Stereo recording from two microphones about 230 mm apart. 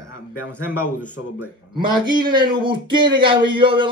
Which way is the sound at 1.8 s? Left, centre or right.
Centre.